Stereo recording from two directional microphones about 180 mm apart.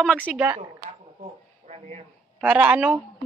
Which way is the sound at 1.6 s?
35° right (ahead or behind).